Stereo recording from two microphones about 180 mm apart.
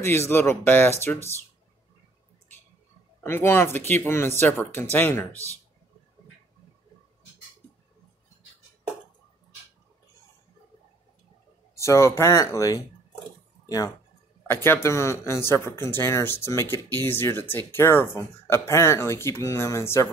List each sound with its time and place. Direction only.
0.0 s speech: 15° left (ahead or behind)
3.3 s speech: 15° left (ahead or behind)
11.7 s speech: 15° left (ahead or behind)